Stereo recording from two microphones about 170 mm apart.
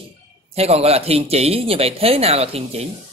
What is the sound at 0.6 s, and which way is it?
Speech, 35° right (ahead or behind).